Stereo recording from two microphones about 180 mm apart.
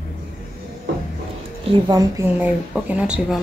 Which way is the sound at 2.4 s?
5° right (ahead or behind).